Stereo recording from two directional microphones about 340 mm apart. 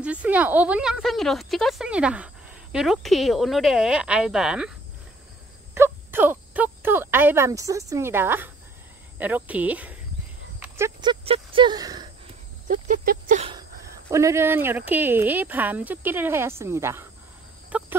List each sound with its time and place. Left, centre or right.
0.0 s a woman's voice: centre
5.8 s a woman's voice: centre
12.6 s speech: right
14.1 s speech: centre
17.6 s cricket: centre